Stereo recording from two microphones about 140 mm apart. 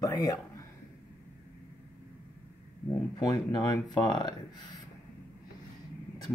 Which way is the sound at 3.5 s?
30° left (ahead or behind).